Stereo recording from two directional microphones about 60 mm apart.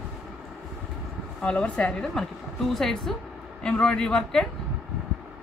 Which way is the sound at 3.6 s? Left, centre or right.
Centre.